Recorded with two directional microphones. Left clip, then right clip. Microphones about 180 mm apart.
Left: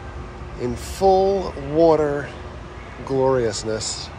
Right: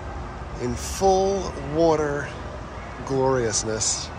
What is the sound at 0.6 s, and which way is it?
Speech, 10° right (ahead or behind).